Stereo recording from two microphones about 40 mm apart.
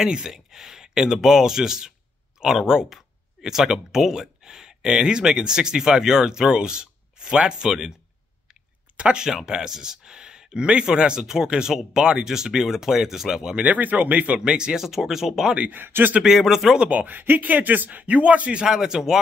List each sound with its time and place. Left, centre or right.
0.0 s speech: centre
13.7 s speech: right
14.4 s speech: right
14.9 s speech: centre
15.7 s speech: right
16.3 s speech: centre
16.9 s speech: right
18.7 s speech: centre